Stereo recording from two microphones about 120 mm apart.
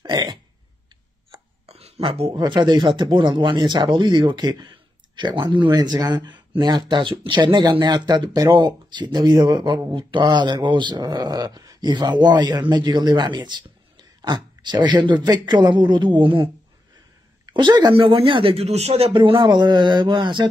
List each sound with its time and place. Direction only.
0.0 s a sound: 40° right (ahead or behind)
1.3 s chopping: 60° right (ahead or behind)
2.3 s speech: 40° right (ahead or behind)
17.5 s speech: 40° right (ahead or behind); by 19.1 s 60° right (ahead or behind)
19.1 s speech: 40° right (ahead or behind)